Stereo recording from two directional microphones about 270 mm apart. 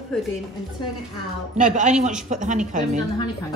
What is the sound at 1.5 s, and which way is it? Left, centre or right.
A man's voice, right.